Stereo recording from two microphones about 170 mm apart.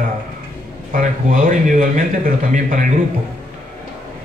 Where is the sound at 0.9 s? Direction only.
55° right (ahead or behind).